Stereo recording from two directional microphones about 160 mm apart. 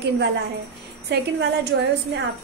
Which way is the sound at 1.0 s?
90° right.